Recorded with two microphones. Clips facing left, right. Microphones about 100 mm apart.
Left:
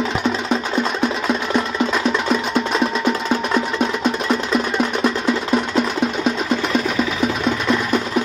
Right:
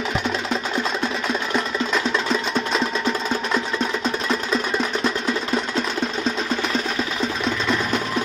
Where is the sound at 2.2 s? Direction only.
10° left (ahead or behind).